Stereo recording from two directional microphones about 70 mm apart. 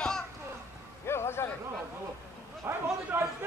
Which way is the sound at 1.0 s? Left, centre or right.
Left.